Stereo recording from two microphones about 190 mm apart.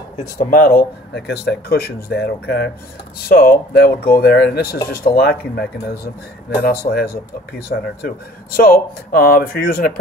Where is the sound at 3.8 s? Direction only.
55° left (ahead or behind).